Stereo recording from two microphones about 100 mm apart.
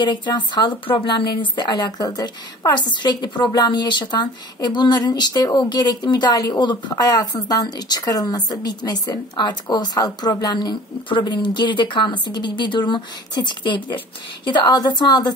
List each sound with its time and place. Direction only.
0.0 s speech: 50° left (ahead or behind)